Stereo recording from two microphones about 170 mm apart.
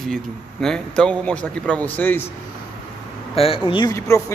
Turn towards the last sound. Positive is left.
turn(degrees=20)  # may be behind; listen again after turning